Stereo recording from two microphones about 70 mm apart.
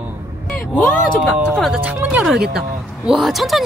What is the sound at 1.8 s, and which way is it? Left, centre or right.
Speech, right.